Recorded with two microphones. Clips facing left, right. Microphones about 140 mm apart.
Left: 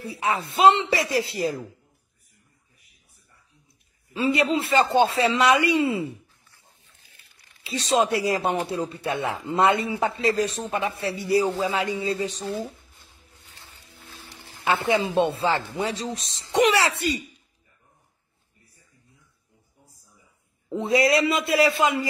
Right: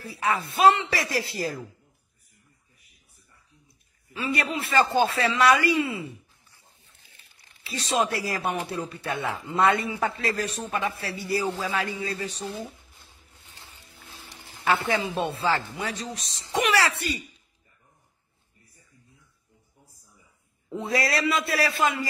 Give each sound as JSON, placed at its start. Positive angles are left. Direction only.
{"t": 0.0, "sound": "a man's voice", "side_deg": 25}
{"t": 4.1, "sound": "a man's voice", "side_deg": 25}
{"t": 7.6, "sound": "a man's voice", "side_deg": 25}
{"t": 13.7, "sound": "a sound", "side_deg": -15}
{"t": 14.6, "sound": "a man's voice", "side_deg": 15}
{"t": 20.7, "sound": "a man's voice", "side_deg": 20}